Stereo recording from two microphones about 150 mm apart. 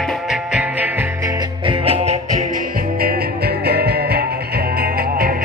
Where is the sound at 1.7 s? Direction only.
40° right (ahead or behind).